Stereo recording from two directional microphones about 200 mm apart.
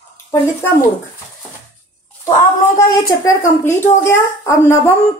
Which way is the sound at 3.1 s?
15° left (ahead or behind).